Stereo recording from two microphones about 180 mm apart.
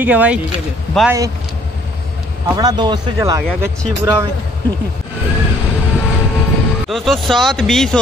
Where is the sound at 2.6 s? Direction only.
25° right (ahead or behind).